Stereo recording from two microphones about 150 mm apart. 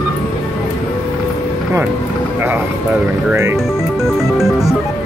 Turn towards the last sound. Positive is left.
turn(degrees=0)  # may be behind; listen again after turning